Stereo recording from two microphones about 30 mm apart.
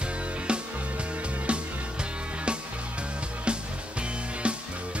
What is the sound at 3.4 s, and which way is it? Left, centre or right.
Music, right.